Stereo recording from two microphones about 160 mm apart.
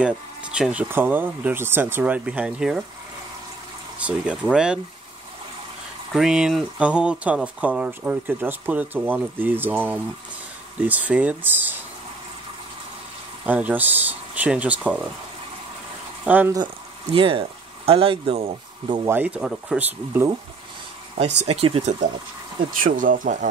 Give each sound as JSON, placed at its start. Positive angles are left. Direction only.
{"t": 0.0, "sound": "speech", "side_deg": -5}
{"t": 4.0, "sound": "speech", "side_deg": -5}
{"t": 6.1, "sound": "speech", "side_deg": -5}
{"t": 13.5, "sound": "speech", "side_deg": -10}
{"t": 16.3, "sound": "speech", "side_deg": -10}
{"t": 16.5, "sound": "speech", "side_deg": -30}
{"t": 19.0, "sound": "speech", "side_deg": -10}
{"t": 21.2, "sound": "speech", "side_deg": -40}
{"t": 22.8, "sound": "speech", "side_deg": -55}